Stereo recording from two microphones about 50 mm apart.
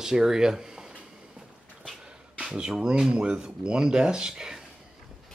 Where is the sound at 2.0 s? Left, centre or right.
Centre.